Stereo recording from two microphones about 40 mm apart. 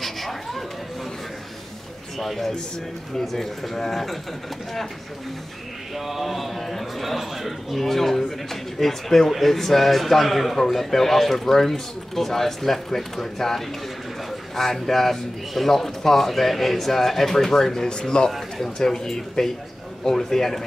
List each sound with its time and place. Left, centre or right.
0.0 s a sound: centre
2.1 s a man's voice: centre
5.9 s a man's voice: centre